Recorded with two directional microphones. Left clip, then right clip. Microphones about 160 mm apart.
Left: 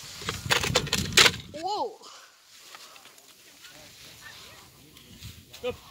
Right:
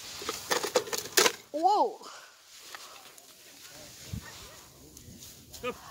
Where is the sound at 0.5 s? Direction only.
20° left (ahead or behind).